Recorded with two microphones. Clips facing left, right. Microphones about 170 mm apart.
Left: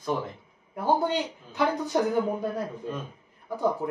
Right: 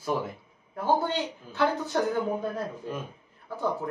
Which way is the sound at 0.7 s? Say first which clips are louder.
Left 1 dB; 15° left (ahead or behind).